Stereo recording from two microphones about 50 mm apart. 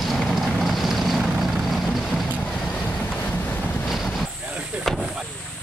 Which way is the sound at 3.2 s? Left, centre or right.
Left.